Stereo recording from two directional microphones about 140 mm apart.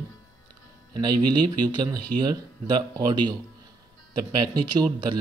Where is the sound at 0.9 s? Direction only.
30° right (ahead or behind).